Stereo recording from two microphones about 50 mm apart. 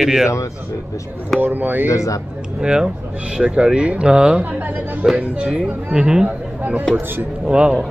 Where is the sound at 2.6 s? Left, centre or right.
Centre.